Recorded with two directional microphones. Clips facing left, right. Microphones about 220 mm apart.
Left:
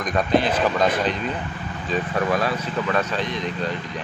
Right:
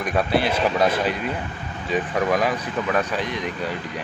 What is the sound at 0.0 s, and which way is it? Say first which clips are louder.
Speech: left 1 dB; 10° right (ahead or behind).